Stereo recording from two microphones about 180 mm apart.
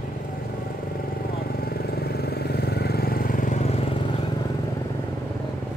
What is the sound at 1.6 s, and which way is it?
Vehicle, 60° left (ahead or behind).